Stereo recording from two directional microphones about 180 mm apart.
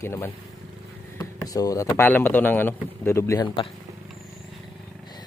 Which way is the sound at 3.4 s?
30° left (ahead or behind).